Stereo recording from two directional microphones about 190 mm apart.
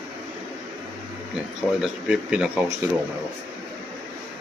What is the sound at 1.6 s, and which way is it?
Speech, 5° right (ahead or behind).